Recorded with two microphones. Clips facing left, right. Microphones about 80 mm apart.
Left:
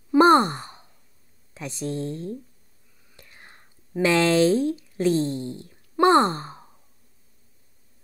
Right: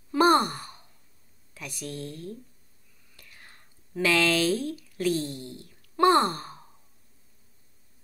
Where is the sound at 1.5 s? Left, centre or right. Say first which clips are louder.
Left 7 dB; left.